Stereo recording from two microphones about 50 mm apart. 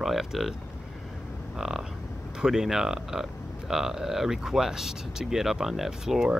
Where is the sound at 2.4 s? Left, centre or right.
Centre.